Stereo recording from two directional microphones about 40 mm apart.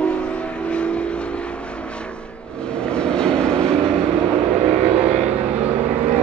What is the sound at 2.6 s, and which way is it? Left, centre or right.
Vehicle, left.